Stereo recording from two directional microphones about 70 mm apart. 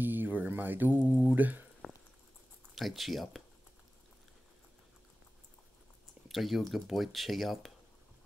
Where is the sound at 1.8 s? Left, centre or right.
Centre.